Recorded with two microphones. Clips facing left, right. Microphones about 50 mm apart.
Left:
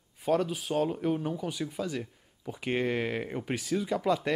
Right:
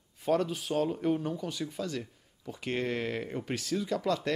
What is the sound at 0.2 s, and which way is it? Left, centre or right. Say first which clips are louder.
Speech: left 1 dB; centre.